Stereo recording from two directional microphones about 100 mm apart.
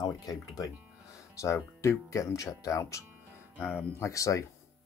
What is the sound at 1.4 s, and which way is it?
Speech, 30° left (ahead or behind).